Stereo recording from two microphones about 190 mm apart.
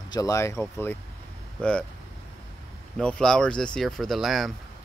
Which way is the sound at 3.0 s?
5° left (ahead or behind).